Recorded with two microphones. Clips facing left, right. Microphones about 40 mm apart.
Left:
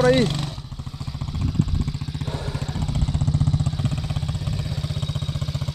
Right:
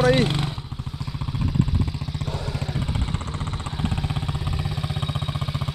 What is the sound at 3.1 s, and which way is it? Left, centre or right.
Vehicle, right.